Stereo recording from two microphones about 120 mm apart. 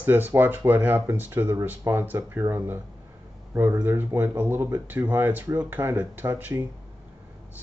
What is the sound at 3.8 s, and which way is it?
Speech, 20° right (ahead or behind).